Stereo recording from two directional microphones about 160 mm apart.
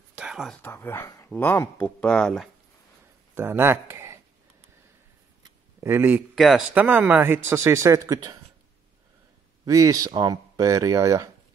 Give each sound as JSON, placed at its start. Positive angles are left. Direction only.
{"t": 0.1, "sound": "whispering", "side_deg": -5}
{"t": 0.6, "sound": "speech", "side_deg": 15}
{"t": 3.3, "sound": "speech", "side_deg": -15}
{"t": 5.4, "sound": "a sound", "side_deg": -15}
{"t": 6.3, "sound": "speech", "side_deg": 0}
{"t": 9.7, "sound": "speech", "side_deg": -20}